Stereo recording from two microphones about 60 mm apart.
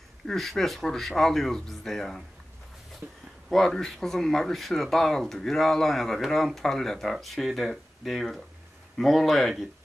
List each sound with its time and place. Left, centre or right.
0.3 s speech: centre
3.0 s speech: right
3.4 s speech: centre